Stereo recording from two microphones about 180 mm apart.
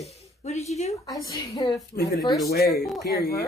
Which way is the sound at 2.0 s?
60° left (ahead or behind).